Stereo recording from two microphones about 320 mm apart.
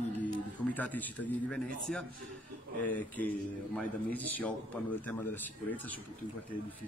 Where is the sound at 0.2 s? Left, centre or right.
Centre.